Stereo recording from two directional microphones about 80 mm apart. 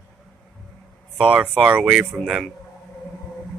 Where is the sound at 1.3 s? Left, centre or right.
Centre.